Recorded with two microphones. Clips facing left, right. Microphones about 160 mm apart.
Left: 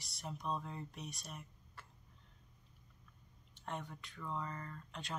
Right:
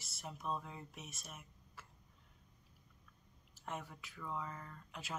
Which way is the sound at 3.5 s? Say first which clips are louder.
Left 1 dB; 5° right (ahead or behind).